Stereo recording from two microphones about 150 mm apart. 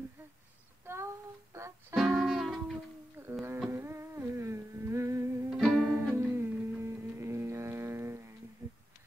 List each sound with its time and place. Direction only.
0.8 s music: 20° right (ahead or behind)
2.0 s music: centre (ahead or behind)
3.2 s humming: 15° right (ahead or behind)
5.5 s music: 5° left (ahead or behind)
5.9 s music: 15° right (ahead or behind)
8.6 s a sound: 20° right (ahead or behind)